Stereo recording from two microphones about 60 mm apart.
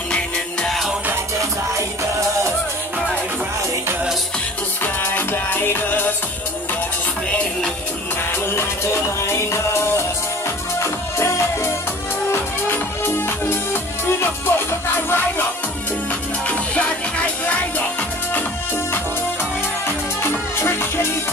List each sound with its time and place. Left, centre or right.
0.1 s music: centre
1.4 s music: right
4.8 s music: left
7.2 s music: centre
9.2 s music: left
16.4 s music: left
20.2 s music: left